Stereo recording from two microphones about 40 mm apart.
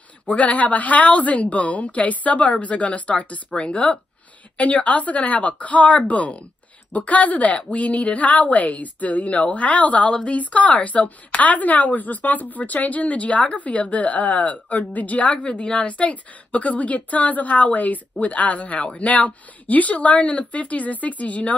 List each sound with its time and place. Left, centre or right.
0.3 s speech: left
15.3 s speech: left
15.9 s speech: left